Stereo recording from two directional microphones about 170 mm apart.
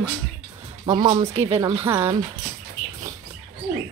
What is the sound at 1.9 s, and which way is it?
Speech, 15° right (ahead or behind).